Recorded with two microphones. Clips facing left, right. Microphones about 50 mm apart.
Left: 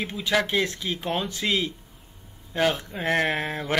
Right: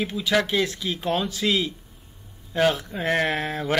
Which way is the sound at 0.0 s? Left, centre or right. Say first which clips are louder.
Right 3 dB; left.